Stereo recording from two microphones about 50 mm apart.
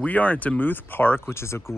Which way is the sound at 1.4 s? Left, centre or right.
Left.